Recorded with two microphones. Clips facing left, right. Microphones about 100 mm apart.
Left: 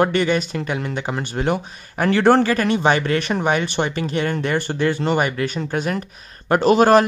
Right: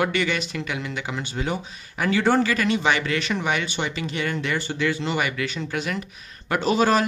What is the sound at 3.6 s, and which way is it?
Speech, 55° left (ahead or behind).